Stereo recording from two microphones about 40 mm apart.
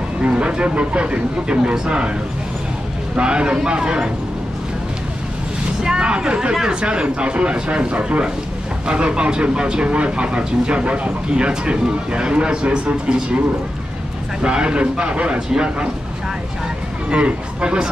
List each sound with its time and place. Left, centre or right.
0.2 s speech: right
3.2 s speech: right
5.9 s speech: right
6.8 s speech: right
14.4 s speech: right
17.1 s speech: right